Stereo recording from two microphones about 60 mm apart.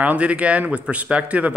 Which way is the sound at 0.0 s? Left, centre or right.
Right.